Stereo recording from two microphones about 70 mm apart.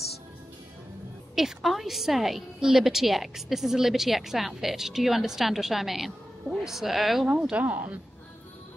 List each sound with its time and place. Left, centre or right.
1.3 s a woman's voice: centre
7.2 s speech: centre
7.6 s speech: right